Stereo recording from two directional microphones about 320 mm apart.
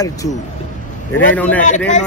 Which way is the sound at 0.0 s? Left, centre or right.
Centre.